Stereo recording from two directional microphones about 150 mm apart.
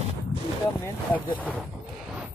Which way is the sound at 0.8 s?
10° left (ahead or behind).